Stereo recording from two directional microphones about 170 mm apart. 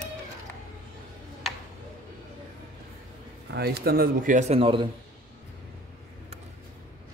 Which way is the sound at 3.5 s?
70° right (ahead or behind).